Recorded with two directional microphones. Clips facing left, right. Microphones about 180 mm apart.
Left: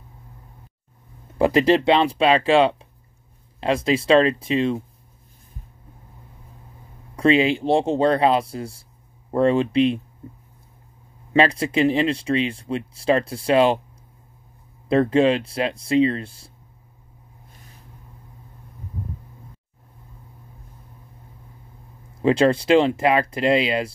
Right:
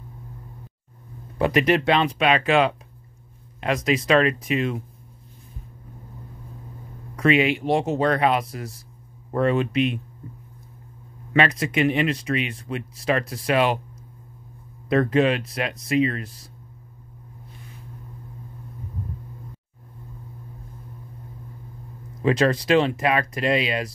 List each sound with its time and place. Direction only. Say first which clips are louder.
1.4 s speech: left 3 dB; 30° left (ahead or behind)
7.2 s speech: left 2 dB; 30° left (ahead or behind)
10.2 s a sound: left 1 dB; 25° left (ahead or behind)
11.3 s speech: left 3 dB; 30° left (ahead or behind)
14.9 s speech: left 2 dB; 30° left (ahead or behind)
22.2 s speech: left 3 dB; 30° left (ahead or behind)